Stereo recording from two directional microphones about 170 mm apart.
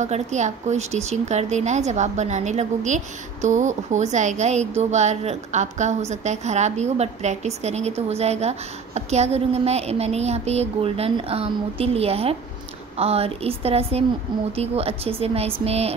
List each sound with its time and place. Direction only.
0.0 s speech: 45° right (ahead or behind)